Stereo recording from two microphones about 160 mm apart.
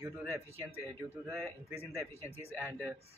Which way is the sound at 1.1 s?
15° right (ahead or behind).